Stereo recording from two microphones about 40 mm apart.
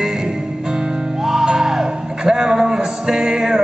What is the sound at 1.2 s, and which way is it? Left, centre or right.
Music, centre.